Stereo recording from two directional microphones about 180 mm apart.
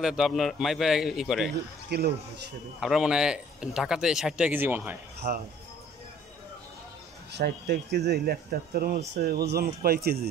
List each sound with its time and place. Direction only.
0.0 s speech: centre (ahead or behind)
1.9 s speech: 60° right (ahead or behind)
2.8 s speech: 5° right (ahead or behind)
5.2 s speech: 40° right (ahead or behind)
7.3 s speech: 65° right (ahead or behind)